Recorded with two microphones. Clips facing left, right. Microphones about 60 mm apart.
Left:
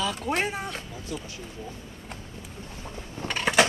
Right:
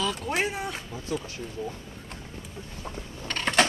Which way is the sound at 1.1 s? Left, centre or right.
Right.